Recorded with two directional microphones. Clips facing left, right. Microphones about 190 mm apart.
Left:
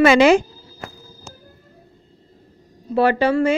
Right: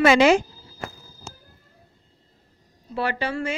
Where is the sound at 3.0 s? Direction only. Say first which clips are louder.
Left 10 dB; 35° left (ahead or behind).